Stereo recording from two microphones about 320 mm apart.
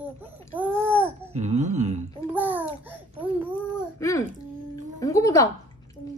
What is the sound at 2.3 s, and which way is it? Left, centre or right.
Speech, centre.